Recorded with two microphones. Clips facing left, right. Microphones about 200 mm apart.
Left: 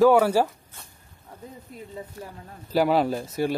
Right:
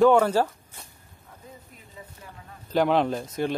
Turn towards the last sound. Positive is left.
turn(degrees=10)  # may be behind; listen again after turning